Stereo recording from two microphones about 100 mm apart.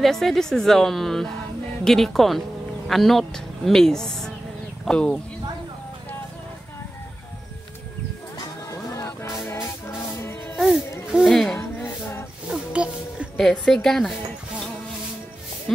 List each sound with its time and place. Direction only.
0.0 s speech: 5° left (ahead or behind)
8.9 s music: 30° left (ahead or behind)
11.1 s a sound: centre (ahead or behind)
11.8 s music: 25° left (ahead or behind)
12.4 s music: 10° right (ahead or behind)
13.4 s speech: 5° left (ahead or behind)